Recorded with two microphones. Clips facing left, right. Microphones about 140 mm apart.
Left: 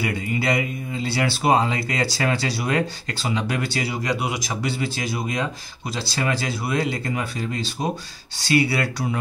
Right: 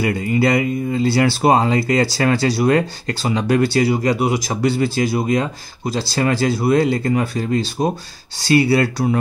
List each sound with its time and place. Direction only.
0.0 s speech: 45° right (ahead or behind)